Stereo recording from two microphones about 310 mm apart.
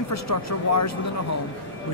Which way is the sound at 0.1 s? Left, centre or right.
Left.